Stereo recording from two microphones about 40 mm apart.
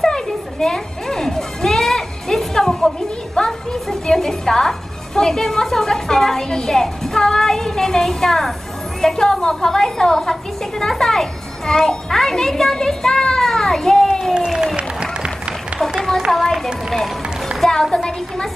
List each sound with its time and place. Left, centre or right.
0.0 s music: centre
7.2 s child singing: centre
9.0 s a woman's voice: centre
12.7 s a sound: centre
14.8 s a sound: right
16.3 s a woman's voice: centre